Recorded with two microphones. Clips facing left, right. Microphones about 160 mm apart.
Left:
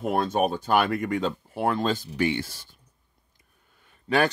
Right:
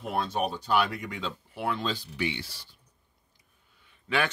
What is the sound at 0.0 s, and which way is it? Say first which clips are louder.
Speech: left 6 dB; 50° left (ahead or behind).